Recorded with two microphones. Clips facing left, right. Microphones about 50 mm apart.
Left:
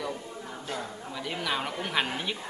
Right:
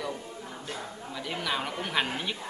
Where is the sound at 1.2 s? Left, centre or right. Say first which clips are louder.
Even; centre.